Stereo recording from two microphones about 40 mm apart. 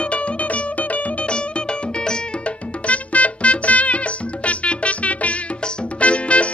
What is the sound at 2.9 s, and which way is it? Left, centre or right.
Music, left.